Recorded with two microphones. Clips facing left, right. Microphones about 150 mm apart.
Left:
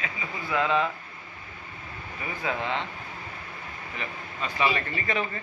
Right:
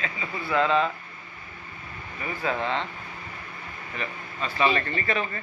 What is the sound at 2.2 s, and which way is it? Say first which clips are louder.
Speech: right 3 dB; 15° left (ahead or behind).